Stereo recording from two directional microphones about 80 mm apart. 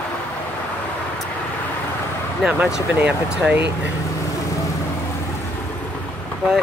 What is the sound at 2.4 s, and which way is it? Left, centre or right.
Speech, centre.